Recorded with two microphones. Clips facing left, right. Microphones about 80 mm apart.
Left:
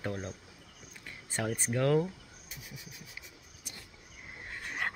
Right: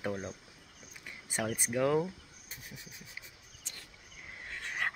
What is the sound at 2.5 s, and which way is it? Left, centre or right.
Vehicle, right.